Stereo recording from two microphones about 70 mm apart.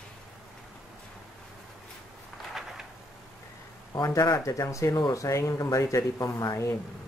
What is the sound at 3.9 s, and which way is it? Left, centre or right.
Speech, left.